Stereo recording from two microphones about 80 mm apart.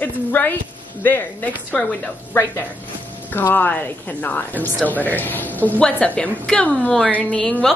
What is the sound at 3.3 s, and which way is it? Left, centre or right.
A woman's voice, left.